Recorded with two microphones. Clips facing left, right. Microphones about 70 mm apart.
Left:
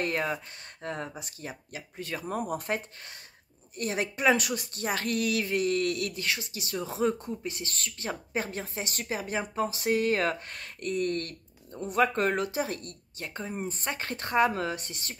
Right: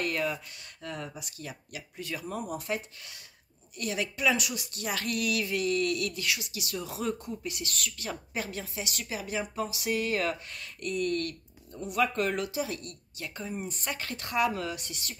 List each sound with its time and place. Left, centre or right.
0.0 s speech: left